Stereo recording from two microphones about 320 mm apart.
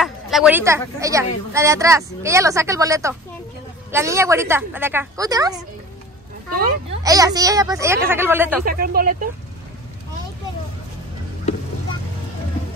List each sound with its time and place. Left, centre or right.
0.0 s a woman's voice: centre
7.0 s a woman's voice: centre
8.6 s speech: right